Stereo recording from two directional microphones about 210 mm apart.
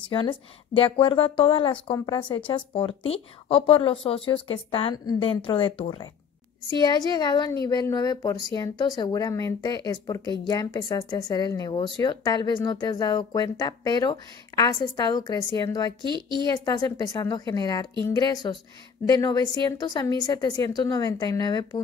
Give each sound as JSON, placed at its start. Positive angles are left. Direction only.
{"t": 0.1, "sound": "speech", "side_deg": 25}
{"t": 16.1, "sound": "a woman's voice", "side_deg": -20}
{"t": 16.4, "sound": "speech", "side_deg": 20}